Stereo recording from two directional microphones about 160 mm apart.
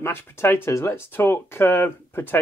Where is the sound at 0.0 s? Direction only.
15° left (ahead or behind).